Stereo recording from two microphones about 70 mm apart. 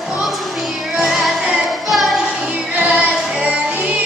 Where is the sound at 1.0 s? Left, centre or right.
Centre.